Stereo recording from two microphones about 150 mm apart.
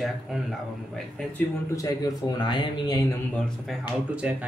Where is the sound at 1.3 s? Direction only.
25° left (ahead or behind).